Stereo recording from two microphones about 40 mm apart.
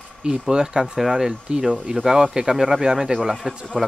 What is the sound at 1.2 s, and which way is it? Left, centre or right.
Speech, centre.